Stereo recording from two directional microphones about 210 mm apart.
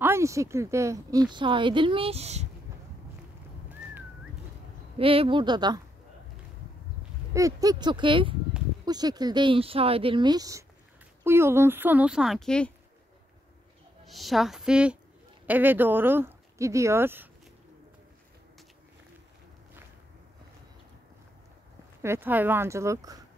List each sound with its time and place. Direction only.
0.0 s speech: 15° right (ahead or behind); by 2.4 s 30° right (ahead or behind)
4.9 s speech: 25° right (ahead or behind)
7.3 s speech: 15° right (ahead or behind); by 12.7 s 5° left (ahead or behind)
14.0 s a woman's voice: centre (ahead or behind)
22.0 s speech: 10° right (ahead or behind)